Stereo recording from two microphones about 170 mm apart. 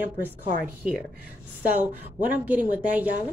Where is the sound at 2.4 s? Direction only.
10° right (ahead or behind).